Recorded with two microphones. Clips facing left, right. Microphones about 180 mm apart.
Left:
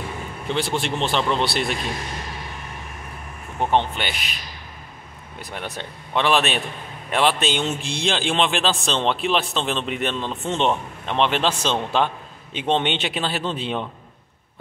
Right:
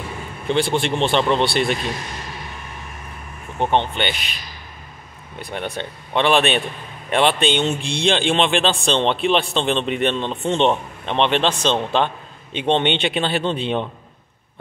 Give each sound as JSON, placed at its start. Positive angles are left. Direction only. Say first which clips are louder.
{"t": 0.5, "sound": "a man's voice", "louder": "right 5 dB", "side_deg": 0}
{"t": 3.5, "sound": "a man's voice", "louder": "right 1 dB", "side_deg": 5}
{"t": 5.4, "sound": "a man's voice", "louder": "right 5 dB", "side_deg": 0}